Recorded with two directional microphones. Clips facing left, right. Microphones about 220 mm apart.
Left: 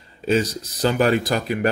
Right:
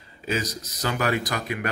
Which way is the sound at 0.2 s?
30° left (ahead or behind).